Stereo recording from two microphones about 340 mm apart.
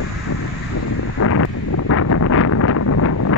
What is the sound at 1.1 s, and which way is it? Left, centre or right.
Wind noise, left.